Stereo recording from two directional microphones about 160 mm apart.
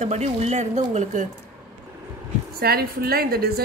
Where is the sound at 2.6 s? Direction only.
75° right (ahead or behind).